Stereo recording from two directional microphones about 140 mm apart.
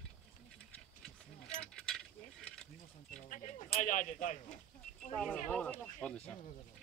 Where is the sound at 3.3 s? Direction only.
65° left (ahead or behind).